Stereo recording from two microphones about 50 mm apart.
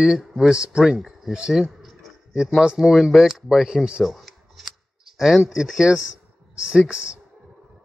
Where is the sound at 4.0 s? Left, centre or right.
Centre.